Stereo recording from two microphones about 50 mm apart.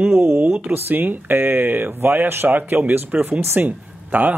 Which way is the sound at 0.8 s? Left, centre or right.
Right.